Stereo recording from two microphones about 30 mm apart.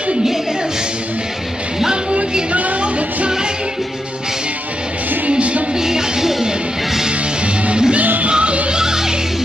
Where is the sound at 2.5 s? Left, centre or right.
Right.